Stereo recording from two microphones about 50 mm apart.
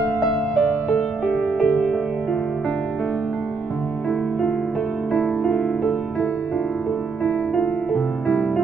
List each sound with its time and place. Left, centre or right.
0.2 s music: centre
1.2 s music: left
5.1 s music: left
7.5 s music: left